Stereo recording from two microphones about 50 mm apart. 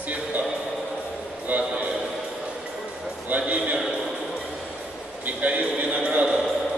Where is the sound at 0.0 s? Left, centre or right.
Right.